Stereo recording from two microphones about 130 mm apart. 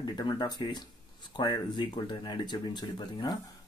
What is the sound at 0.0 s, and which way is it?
Speech, 35° left (ahead or behind).